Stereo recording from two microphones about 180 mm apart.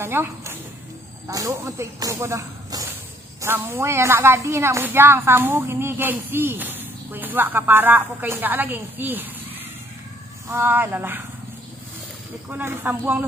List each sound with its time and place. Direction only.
0.0 s a woman's voice: 15° right (ahead or behind)
10.5 s a woman's voice: 10° right (ahead or behind)
12.4 s a woman's voice: 10° right (ahead or behind)